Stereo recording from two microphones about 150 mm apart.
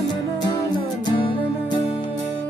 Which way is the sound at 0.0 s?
30° left (ahead or behind).